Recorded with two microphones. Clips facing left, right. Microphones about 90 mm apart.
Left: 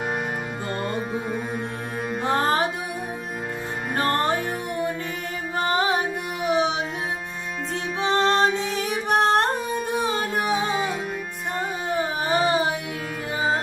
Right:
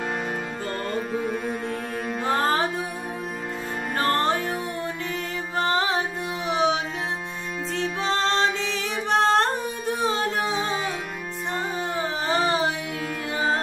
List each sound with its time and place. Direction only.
0.8 s music: 15° left (ahead or behind)
4.0 s music: 15° left (ahead or behind)
5.7 s music: 15° left (ahead or behind)
8.0 s music: 15° left (ahead or behind)
9.1 s singing: 15° left (ahead or behind)
9.8 s music: 15° left (ahead or behind)
11.9 s carnatic music: 15° left (ahead or behind)